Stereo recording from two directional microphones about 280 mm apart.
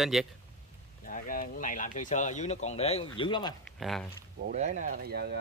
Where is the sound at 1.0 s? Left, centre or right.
Left.